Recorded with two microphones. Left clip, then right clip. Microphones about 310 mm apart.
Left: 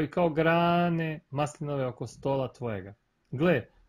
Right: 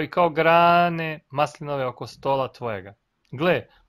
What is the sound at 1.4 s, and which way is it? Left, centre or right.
Speech, right.